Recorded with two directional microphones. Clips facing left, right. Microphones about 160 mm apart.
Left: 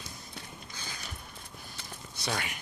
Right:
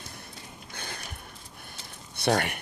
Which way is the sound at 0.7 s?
60° right (ahead or behind).